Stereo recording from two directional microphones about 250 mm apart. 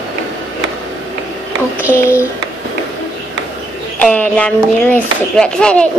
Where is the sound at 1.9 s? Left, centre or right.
Centre.